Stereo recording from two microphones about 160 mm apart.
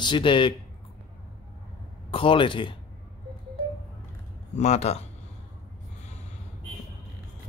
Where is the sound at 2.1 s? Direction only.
35° left (ahead or behind).